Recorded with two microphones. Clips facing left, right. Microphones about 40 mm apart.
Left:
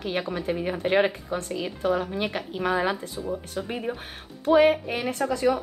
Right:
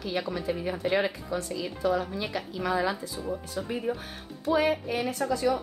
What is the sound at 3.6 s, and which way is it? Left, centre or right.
A woman's voice, left.